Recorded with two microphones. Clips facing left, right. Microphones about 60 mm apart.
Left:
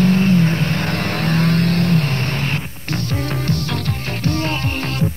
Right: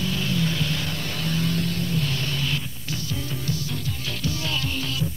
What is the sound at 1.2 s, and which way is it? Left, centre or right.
Vehicle, left.